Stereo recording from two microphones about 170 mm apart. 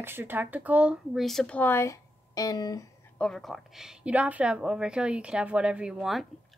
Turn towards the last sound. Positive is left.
turn(degrees=0)  # may be behind; listen again after turning